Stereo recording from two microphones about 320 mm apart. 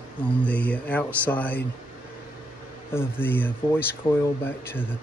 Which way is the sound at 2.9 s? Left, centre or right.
Centre.